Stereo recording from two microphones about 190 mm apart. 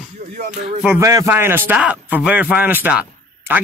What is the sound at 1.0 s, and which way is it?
Speech, 15° right (ahead or behind).